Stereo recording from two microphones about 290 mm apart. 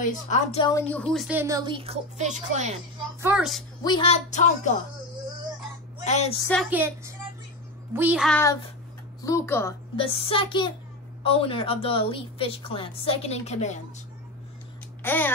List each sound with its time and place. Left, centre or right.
0.0 s a woman's voice: left; by 2.7 s right
3.2 s a woman's voice: centre
3.8 s a woman's voice: centre
6.0 s a woman's voice: left
6.4 s a woman's voice: centre; by 13.7 s left
15.0 s a sound: centre